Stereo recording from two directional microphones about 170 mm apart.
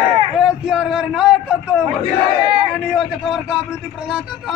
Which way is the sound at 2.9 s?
5° right (ahead or behind).